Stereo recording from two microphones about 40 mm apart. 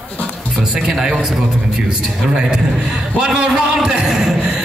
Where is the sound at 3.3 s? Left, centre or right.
Centre.